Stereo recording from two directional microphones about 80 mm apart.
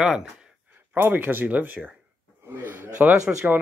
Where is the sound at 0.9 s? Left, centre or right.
Right.